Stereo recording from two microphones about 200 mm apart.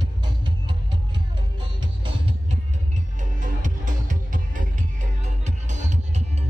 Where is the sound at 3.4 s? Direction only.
40° right (ahead or behind).